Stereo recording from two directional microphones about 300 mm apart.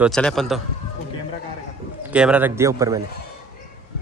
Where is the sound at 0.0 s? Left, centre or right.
Centre.